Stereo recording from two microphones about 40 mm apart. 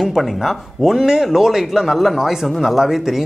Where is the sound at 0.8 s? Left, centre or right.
Centre.